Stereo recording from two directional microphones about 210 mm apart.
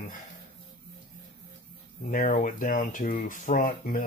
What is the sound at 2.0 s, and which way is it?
Speech, 40° left (ahead or behind).